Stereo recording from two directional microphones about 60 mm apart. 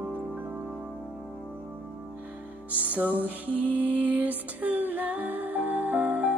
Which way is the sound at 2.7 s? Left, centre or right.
Right.